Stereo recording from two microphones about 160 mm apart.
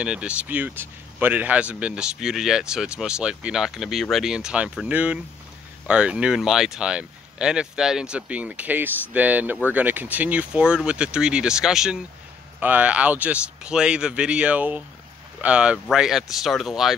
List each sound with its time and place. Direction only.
0.0 s a man's voice: 5° right (ahead or behind)